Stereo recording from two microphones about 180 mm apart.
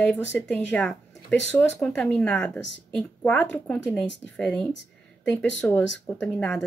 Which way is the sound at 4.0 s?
85° left.